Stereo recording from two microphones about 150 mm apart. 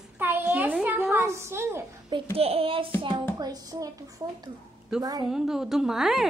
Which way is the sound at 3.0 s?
25° right (ahead or behind).